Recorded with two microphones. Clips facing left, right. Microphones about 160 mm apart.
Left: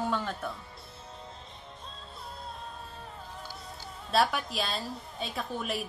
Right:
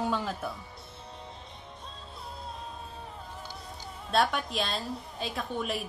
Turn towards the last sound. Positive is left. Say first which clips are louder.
# right 1 dB
turn(degrees=0)  # may be behind; listen again after turning